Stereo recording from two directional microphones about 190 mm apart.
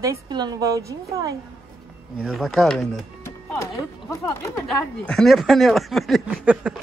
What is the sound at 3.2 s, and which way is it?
Speech, 15° left (ahead or behind).